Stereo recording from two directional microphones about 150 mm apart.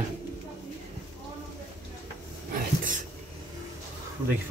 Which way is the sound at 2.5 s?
65° right (ahead or behind).